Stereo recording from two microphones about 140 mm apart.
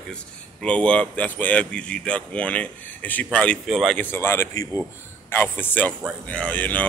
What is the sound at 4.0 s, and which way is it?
Speech, 15° left (ahead or behind).